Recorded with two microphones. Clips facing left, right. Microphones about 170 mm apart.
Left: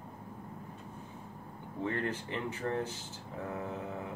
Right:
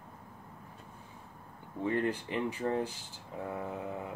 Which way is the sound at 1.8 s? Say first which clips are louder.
Right 3 dB; 15° right (ahead or behind).